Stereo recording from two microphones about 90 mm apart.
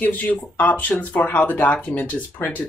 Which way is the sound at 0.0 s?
20° left (ahead or behind).